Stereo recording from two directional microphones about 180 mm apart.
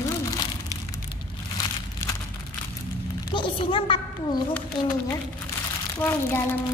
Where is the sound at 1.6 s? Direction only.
20° left (ahead or behind).